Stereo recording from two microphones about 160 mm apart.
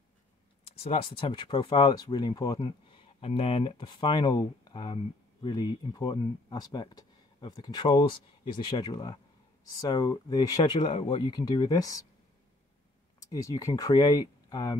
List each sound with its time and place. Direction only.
0.7 s speech: 35° left (ahead or behind)
13.3 s speech: 20° left (ahead or behind)